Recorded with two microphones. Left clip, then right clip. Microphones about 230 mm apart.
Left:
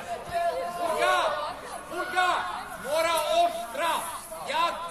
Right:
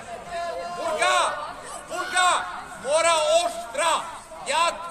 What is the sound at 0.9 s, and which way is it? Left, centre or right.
Chatter, right.